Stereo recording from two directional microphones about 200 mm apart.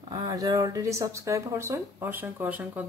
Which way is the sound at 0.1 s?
20° right (ahead or behind).